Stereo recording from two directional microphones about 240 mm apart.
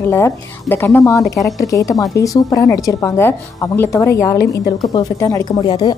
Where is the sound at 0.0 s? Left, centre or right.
Centre.